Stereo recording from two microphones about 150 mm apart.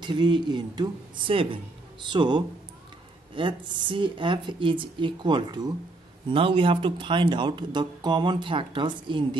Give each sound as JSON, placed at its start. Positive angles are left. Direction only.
{"t": 0.0, "sound": "speech", "side_deg": -30}